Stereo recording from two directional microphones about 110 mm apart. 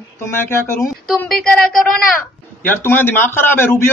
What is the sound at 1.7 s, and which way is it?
Speech, centre (ahead or behind).